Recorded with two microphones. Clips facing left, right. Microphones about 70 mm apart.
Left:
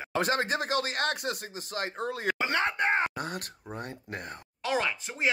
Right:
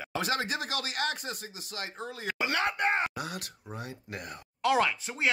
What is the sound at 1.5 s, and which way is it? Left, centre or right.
Speech, left.